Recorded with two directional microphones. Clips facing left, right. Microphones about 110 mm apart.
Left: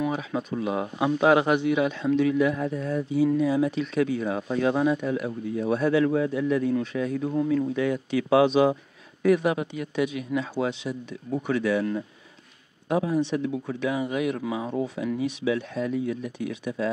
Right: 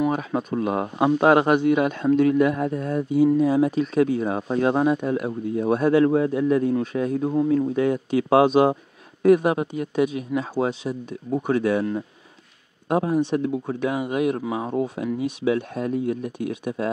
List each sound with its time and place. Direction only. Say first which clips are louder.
0.1 s speech: right 4 dB; 50° right (ahead or behind)
12.8 s speech: right 3 dB; 45° right (ahead or behind)